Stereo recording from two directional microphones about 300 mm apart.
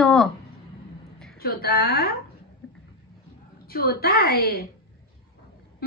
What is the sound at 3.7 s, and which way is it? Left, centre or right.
A woman's voice, left.